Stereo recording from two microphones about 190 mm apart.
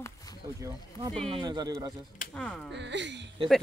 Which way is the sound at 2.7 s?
65° right (ahead or behind).